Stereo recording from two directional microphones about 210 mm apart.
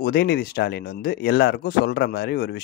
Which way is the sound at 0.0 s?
50° left (ahead or behind).